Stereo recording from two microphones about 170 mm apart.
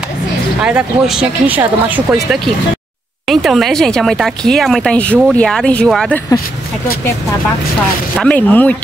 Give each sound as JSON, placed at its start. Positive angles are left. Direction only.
{"t": 0.6, "sound": "speech", "side_deg": -5}
{"t": 3.3, "sound": "speech", "side_deg": 0}
{"t": 8.2, "sound": "speech", "side_deg": 10}